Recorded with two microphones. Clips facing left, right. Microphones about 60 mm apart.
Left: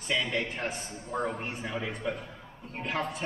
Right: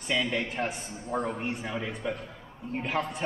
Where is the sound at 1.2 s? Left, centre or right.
Centre.